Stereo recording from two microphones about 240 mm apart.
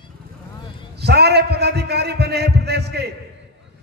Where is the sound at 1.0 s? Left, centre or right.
Right.